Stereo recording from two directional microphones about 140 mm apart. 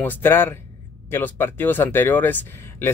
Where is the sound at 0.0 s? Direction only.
15° left (ahead or behind).